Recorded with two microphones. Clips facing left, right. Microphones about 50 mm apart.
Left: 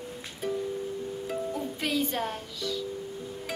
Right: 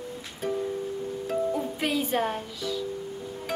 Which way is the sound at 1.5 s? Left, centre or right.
Centre.